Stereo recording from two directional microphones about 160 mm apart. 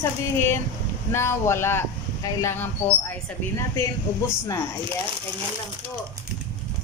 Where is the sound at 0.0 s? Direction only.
15° left (ahead or behind).